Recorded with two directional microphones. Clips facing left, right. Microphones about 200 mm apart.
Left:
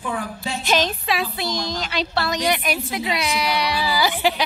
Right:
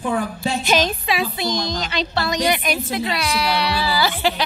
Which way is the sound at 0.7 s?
Centre (ahead or behind).